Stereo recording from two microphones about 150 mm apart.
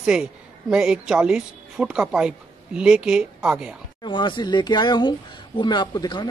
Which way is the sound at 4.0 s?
30° left (ahead or behind).